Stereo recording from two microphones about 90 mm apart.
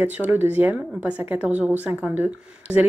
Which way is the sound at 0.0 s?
20° right (ahead or behind).